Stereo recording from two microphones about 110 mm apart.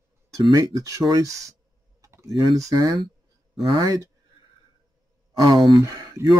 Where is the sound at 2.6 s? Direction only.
35° right (ahead or behind).